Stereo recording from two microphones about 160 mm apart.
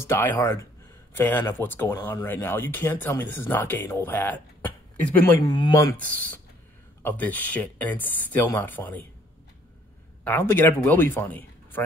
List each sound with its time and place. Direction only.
0.0 s speech: 15° left (ahead or behind)
5.3 s speech: 25° left (ahead or behind)
5.9 s speech: 10° left (ahead or behind)
10.2 s a man's voice: 15° left (ahead or behind)